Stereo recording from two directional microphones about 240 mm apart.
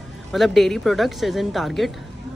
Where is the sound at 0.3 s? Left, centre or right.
Centre.